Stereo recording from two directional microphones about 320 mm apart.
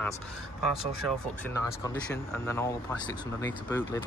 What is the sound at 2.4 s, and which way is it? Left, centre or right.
Speech, centre.